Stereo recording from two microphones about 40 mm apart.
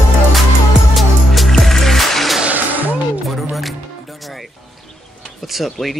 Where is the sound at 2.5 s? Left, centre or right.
Right.